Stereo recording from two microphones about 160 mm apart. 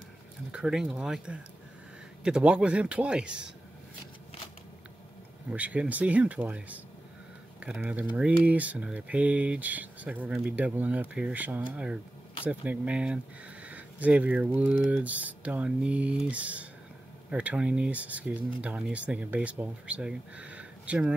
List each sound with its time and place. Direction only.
0.5 s speech: 5° right (ahead or behind)
5.5 s speech: 10° right (ahead or behind)